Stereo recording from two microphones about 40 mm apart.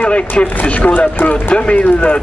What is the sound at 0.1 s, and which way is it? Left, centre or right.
Speech, left.